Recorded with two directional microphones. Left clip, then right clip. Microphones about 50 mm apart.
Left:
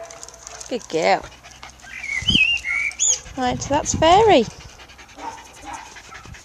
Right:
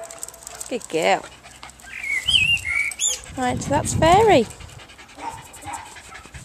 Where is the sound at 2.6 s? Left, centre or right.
Centre.